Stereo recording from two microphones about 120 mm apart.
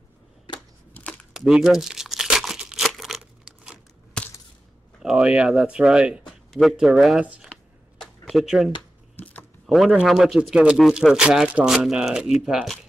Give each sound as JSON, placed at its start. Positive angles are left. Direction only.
{"t": 1.3, "sound": "crumpling", "side_deg": -5}
{"t": 5.0, "sound": "speech", "side_deg": -10}
{"t": 6.2, "sound": "speech", "side_deg": 0}
{"t": 8.0, "sound": "a sound", "side_deg": 0}
{"t": 9.1, "sound": "a sound", "side_deg": 15}
{"t": 9.7, "sound": "speech", "side_deg": 0}